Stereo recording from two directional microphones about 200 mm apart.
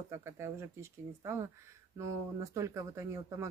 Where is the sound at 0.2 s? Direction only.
15° right (ahead or behind).